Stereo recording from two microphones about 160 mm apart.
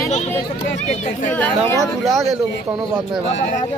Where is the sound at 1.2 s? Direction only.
10° left (ahead or behind).